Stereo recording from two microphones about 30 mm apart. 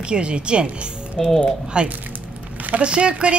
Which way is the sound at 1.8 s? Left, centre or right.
Right.